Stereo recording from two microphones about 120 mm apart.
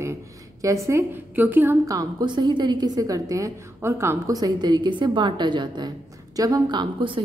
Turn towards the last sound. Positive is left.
turn(degrees=-40)  # may be behind; listen again after turning